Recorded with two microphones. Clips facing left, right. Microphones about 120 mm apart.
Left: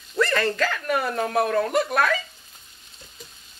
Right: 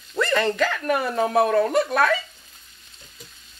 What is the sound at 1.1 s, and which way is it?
Stir, 20° right (ahead or behind).